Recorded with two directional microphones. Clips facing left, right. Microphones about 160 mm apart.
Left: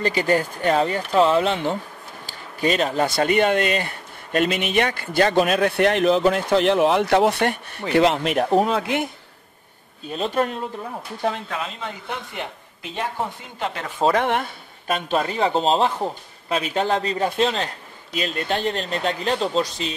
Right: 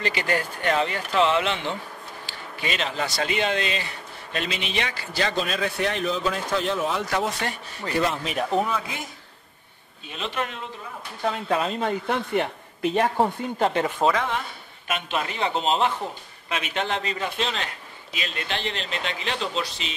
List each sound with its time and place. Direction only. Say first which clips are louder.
0.0 s speech: left 6 dB; 40° left (ahead or behind); by 9.1 s 70° left (ahead or behind)
10.0 s speech: left 7 dB; 40° left (ahead or behind)
11.4 s speech: right 5 dB; 35° right (ahead or behind)
12.4 s speech: right 8 dB; 55° right (ahead or behind)
14.1 s speech: left 6 dB; 60° left (ahead or behind)
14.9 s speech: left 5 dB; 40° left (ahead or behind)